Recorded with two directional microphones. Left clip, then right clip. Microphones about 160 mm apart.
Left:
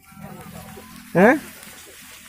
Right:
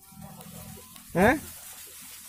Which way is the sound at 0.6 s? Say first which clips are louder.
Left 8 dB; 10° left (ahead or behind).